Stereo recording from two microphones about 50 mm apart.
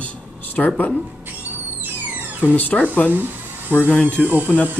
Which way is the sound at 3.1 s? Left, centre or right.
Right.